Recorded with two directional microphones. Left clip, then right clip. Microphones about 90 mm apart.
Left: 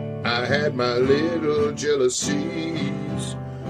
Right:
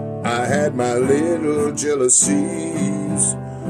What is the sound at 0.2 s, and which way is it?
Music, 30° right (ahead or behind).